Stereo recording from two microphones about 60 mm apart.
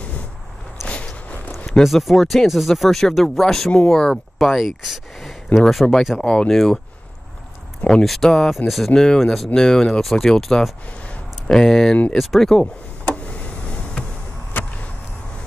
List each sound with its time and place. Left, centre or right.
0.8 s walk: centre
1.7 s speech: centre
4.4 s speech: centre
7.8 s speech: centre
9.0 s speech: centre
13.1 s a sound: left
14.5 s a sound: left